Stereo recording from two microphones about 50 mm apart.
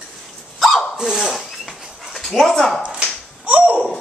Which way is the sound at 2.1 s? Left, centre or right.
Centre.